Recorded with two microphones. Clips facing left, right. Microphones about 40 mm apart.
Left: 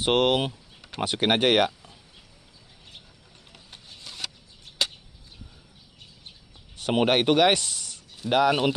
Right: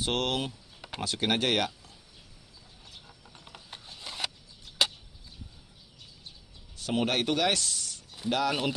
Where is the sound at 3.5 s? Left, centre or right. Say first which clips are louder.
Right 1 dB; centre.